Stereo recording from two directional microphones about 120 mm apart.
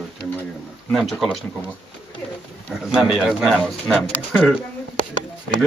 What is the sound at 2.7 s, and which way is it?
Speech, 5° right (ahead or behind).